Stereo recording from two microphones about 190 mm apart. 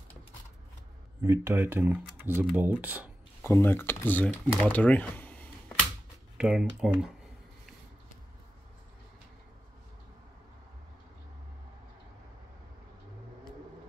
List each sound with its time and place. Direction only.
1.2 s speech: 15° right (ahead or behind)
3.4 s speech: 15° left (ahead or behind)
6.3 s speech: 5° right (ahead or behind)